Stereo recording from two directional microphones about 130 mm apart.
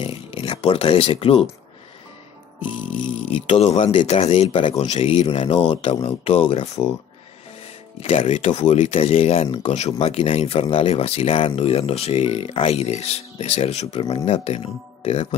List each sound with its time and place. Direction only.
0.0 s a sound: 45° left (ahead or behind)
3.4 s speech: 55° left (ahead or behind)
3.9 s speech: 40° left (ahead or behind)
4.2 s speech: 55° left (ahead or behind)
4.5 s speech: 40° left (ahead or behind)
4.7 s speech: 55° left (ahead or behind)
7.6 s music: 50° left (ahead or behind)
8.5 s speech: 65° left (ahead or behind)